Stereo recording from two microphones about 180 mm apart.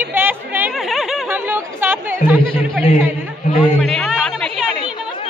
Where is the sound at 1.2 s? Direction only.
10° right (ahead or behind).